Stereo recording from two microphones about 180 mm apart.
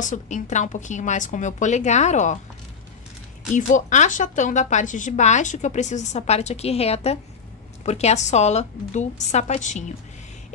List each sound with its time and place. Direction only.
0.0 s a woman's voice: 45° left (ahead or behind)
3.5 s a woman's voice: 45° left (ahead or behind)